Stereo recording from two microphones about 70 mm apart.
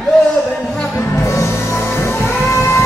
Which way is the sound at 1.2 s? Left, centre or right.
Left.